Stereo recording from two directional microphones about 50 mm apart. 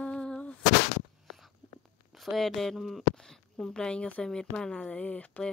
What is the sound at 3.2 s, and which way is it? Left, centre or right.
A woman's voice, centre.